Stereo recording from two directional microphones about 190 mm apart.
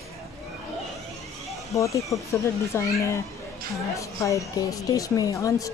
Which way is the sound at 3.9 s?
15° left (ahead or behind).